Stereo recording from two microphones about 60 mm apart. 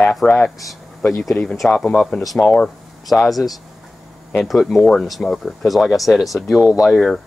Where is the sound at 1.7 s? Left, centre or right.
Centre.